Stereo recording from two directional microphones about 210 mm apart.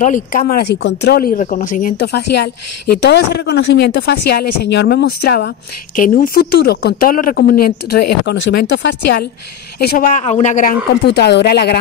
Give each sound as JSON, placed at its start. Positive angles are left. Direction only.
{"t": 0.0, "sound": "speech", "side_deg": 40}
{"t": 5.9, "sound": "speech", "side_deg": 40}
{"t": 11.1, "sound": "speech", "side_deg": 55}